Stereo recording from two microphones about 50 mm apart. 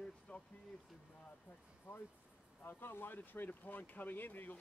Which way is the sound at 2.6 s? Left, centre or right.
Left.